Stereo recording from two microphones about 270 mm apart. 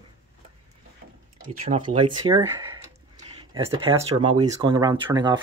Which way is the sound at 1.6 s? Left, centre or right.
Right.